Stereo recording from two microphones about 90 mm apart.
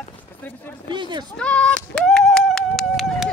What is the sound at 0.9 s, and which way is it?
Speech, 60° right (ahead or behind).